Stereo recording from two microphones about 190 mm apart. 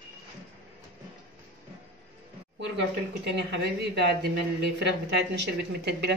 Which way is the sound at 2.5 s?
65° right (ahead or behind).